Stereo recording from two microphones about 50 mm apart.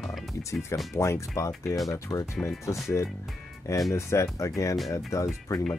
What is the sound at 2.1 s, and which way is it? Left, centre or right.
Speech, left.